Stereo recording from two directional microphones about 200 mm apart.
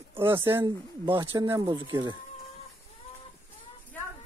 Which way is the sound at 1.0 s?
25° right (ahead or behind).